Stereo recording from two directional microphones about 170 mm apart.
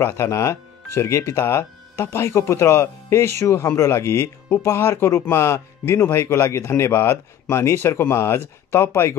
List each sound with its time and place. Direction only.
0.0 s speech: 15° left (ahead or behind)